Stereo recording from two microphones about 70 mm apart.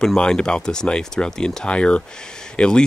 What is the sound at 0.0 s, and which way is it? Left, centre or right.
Speech, centre.